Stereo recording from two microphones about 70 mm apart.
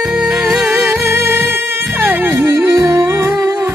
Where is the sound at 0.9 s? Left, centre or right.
Right.